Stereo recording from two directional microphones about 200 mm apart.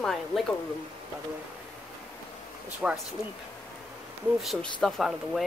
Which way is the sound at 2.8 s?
5° right (ahead or behind).